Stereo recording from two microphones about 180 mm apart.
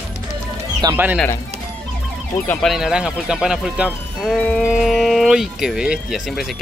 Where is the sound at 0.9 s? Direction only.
10° right (ahead or behind).